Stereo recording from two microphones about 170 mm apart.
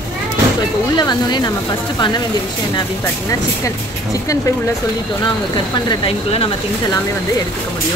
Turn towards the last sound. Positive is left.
turn(degrees=35)  # may be behind; listen again after turning